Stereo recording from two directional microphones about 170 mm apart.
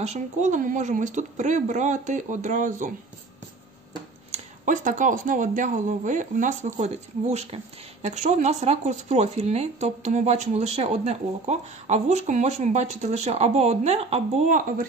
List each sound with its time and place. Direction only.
0.0 s speech: 45° right (ahead or behind)
4.3 s speech: 50° right (ahead or behind)